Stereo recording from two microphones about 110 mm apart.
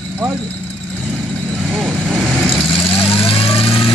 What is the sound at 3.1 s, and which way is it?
Vehicle, 55° left (ahead or behind).